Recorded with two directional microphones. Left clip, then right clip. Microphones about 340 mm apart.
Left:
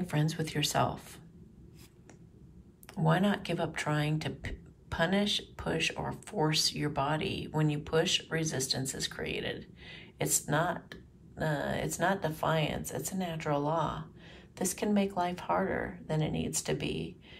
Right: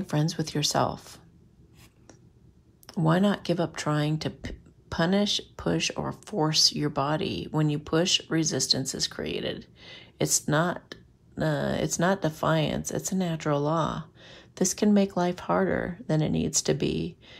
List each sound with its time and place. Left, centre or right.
0.0 s speech: centre
2.9 s speech: centre